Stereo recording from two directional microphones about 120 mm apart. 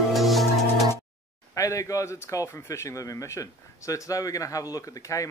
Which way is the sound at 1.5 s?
25° left (ahead or behind).